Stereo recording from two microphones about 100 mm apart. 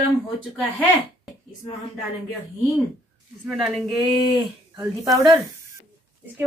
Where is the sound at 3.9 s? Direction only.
50° right (ahead or behind).